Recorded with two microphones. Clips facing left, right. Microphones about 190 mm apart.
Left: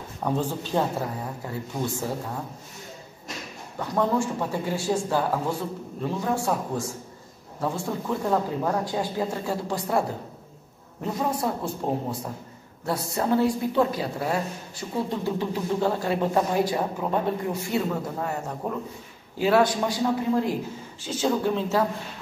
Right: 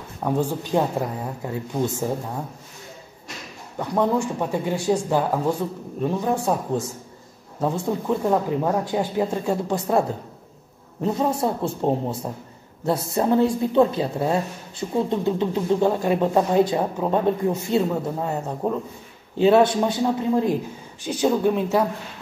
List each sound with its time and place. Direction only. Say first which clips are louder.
0.2 s a woman's voice: right 3 dB; 10° right (ahead or behind)
3.9 s a woman's voice: right 3 dB; 15° right (ahead or behind)